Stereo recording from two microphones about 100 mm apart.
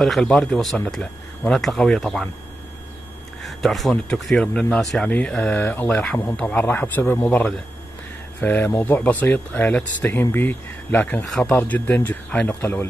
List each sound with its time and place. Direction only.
0.0 s speech: 5° left (ahead or behind)
3.4 s a sound: centre (ahead or behind)
3.9 s speech: 5° left (ahead or behind)
5.5 s a man's voice: 20° left (ahead or behind)
7.2 s a man's voice: 10° left (ahead or behind)
11.2 s speech: 5° left (ahead or behind)
11.5 s speech: 15° left (ahead or behind)